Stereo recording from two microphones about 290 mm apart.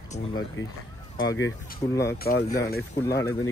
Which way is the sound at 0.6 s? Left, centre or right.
Left.